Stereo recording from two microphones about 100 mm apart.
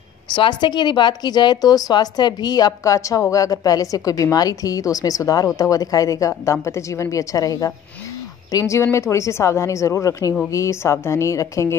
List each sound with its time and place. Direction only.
0.3 s a woman's voice: 50° left (ahead or behind); by 11.7 s 30° left (ahead or behind)